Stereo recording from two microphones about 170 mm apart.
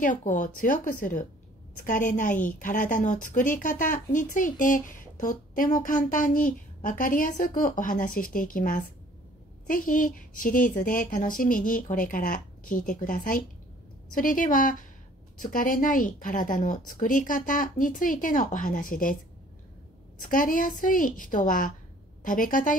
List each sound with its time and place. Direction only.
0.0 s a woman's voice: 50° left (ahead or behind)
20.2 s a woman's voice: 50° left (ahead or behind)